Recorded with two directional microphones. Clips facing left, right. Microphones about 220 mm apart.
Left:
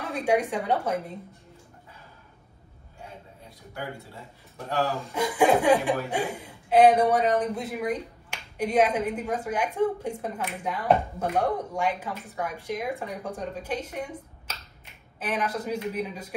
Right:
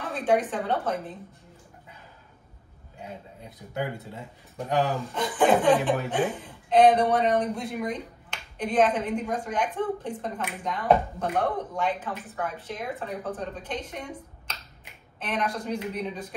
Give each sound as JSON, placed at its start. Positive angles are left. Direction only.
{"t": 0.1, "sound": "a woman's voice", "side_deg": 10}
{"t": 3.0, "sound": "a man's voice", "side_deg": -20}
{"t": 5.1, "sound": "a woman's voice", "side_deg": 10}